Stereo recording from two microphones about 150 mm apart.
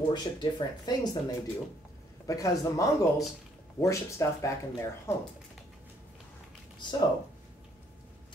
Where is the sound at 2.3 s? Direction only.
20° left (ahead or behind).